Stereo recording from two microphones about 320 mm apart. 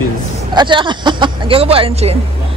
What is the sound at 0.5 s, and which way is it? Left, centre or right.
Speech, centre.